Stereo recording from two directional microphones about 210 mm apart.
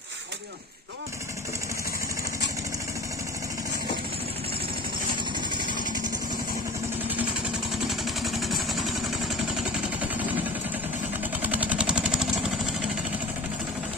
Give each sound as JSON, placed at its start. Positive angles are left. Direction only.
{"t": 5.5, "sound": "vehicle", "side_deg": -20}
{"t": 7.9, "sound": "vehicle", "side_deg": 0}
{"t": 11.4, "sound": "vehicle", "side_deg": -5}